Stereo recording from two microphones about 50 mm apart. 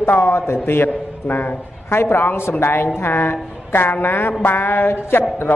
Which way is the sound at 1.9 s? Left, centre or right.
Left.